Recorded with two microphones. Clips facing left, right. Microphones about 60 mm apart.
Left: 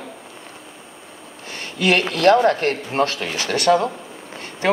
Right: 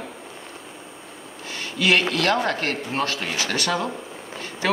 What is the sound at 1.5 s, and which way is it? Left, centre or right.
Speech, left.